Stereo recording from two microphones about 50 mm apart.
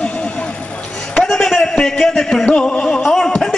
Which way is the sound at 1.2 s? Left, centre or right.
Centre.